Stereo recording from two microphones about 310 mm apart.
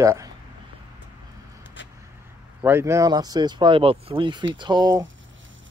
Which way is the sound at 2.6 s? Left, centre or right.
Centre.